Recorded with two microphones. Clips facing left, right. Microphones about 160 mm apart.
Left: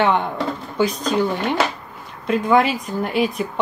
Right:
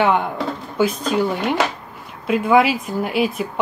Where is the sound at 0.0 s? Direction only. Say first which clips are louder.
Right 1 dB; 5° right (ahead or behind).